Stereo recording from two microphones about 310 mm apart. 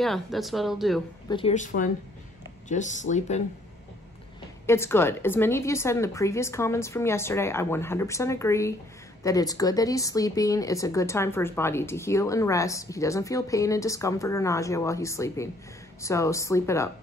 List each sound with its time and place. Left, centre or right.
0.0 s speech: centre
1.3 s speech: left
4.6 s a woman's voice: centre